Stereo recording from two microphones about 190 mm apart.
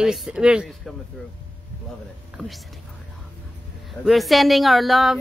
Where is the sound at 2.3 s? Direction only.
Centre (ahead or behind).